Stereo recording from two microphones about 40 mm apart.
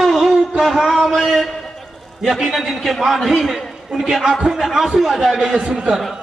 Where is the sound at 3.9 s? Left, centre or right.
Centre.